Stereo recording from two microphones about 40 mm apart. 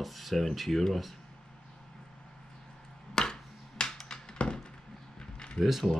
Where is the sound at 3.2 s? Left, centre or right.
Centre.